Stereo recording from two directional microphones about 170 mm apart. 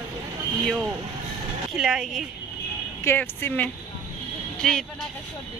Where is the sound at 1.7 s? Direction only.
Centre (ahead or behind).